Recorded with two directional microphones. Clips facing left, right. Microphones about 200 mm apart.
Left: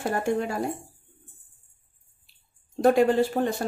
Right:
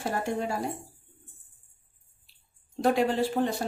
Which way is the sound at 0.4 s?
55° left (ahead or behind).